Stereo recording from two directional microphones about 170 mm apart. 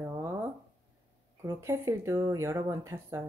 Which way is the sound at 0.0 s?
15° right (ahead or behind).